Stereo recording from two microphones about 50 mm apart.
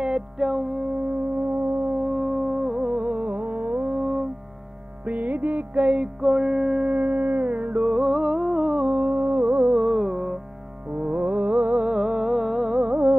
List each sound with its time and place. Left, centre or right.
0.0 s music: centre
1.0 s music: right
1.9 s music: centre
3.3 s music: right
3.9 s music: centre
5.0 s music: right
5.8 s music: centre
6.2 s music: centre
6.9 s music: right
7.9 s humming: centre
9.1 s music: right; by 10.4 s centre
10.9 s music: right
12.0 s music: centre
12.8 s music: right